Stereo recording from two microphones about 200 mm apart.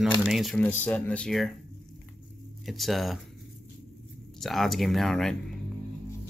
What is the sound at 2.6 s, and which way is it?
Speech, centre (ahead or behind).